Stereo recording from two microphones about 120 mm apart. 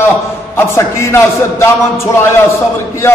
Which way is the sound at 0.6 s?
20° left (ahead or behind).